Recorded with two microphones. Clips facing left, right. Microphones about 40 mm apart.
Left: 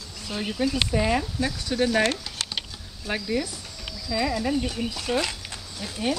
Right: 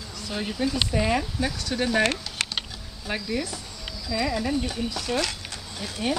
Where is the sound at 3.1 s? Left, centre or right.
Centre.